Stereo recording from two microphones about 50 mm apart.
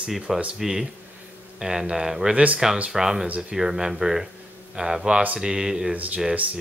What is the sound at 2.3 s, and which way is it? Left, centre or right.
Speech, right.